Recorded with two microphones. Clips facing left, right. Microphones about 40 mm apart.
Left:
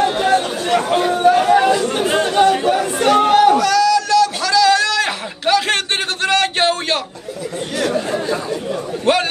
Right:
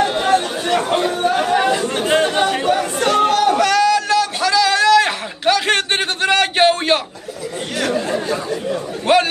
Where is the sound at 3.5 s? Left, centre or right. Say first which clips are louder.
Left 1 dB; right.